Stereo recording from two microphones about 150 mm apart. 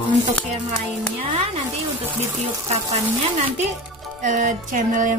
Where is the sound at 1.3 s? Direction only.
45° right (ahead or behind).